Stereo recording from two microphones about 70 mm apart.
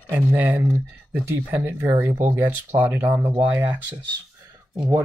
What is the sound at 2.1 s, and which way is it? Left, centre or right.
Speech, right.